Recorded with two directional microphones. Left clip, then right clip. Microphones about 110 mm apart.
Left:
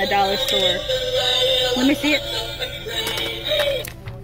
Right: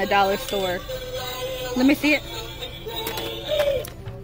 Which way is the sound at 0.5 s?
5° left (ahead or behind).